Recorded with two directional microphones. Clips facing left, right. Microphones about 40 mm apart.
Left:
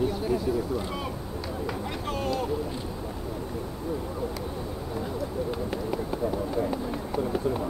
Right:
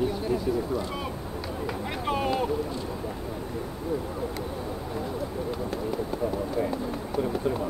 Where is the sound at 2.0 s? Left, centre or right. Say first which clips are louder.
Right 4 dB; centre.